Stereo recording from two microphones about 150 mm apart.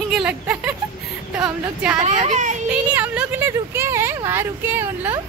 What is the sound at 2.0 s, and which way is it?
Speech, 50° right (ahead or behind).